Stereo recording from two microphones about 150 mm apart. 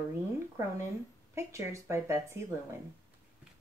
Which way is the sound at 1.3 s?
20° right (ahead or behind).